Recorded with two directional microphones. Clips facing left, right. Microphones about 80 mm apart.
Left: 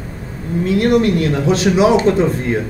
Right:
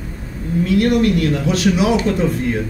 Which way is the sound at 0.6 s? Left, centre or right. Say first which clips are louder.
Left 1 dB; left.